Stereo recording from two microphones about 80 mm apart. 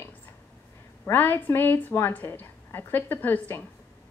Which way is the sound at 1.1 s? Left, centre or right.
Left.